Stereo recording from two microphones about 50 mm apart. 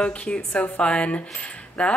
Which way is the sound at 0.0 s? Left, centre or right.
Left.